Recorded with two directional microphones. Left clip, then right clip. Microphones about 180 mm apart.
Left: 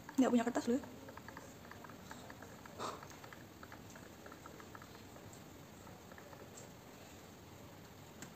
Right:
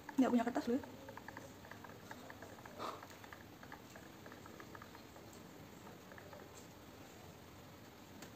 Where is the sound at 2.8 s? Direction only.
20° left (ahead or behind).